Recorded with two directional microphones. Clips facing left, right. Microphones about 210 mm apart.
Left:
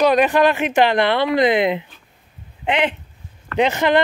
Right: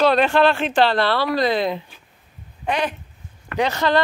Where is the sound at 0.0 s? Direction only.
15° left (ahead or behind).